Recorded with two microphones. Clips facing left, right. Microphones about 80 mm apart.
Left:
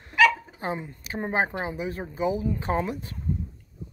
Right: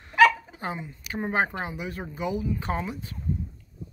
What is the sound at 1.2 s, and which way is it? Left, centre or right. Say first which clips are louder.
Speech: even; left.